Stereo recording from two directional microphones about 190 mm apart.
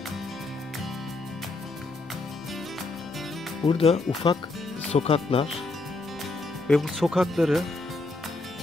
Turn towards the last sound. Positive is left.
turn(degrees=0)  # may be behind; listen again after turning